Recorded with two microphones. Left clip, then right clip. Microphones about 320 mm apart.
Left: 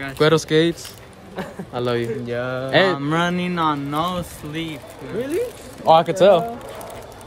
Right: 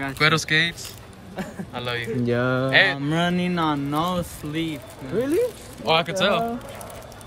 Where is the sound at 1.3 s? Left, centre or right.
Centre.